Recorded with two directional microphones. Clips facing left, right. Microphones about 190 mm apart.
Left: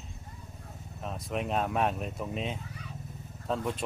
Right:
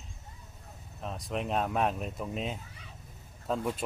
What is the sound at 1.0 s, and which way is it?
A man's voice, centre (ahead or behind).